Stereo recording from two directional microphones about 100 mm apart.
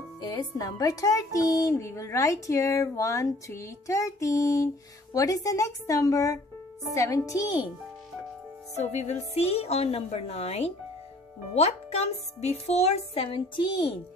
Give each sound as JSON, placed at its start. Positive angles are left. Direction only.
{"t": 0.2, "sound": "speech", "side_deg": 40}
{"t": 8.7, "sound": "a woman's voice", "side_deg": 90}
{"t": 13.6, "sound": "a child's voice", "side_deg": 50}